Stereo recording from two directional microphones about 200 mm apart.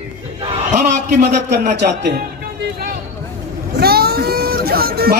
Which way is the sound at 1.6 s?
50° right (ahead or behind).